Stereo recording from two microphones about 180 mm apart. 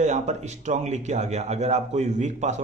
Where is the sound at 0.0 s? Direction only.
40° right (ahead or behind).